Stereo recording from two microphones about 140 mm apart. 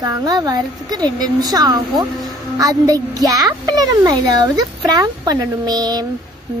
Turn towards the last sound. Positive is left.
turn(degrees=-30)  # may be behind; listen again after turning